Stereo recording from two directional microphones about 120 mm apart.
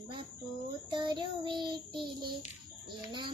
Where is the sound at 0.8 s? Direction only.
40° right (ahead or behind).